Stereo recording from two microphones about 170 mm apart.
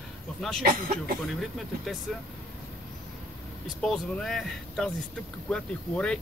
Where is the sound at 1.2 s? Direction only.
Centre (ahead or behind).